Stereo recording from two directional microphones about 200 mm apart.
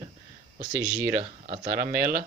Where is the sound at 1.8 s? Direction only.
45° right (ahead or behind).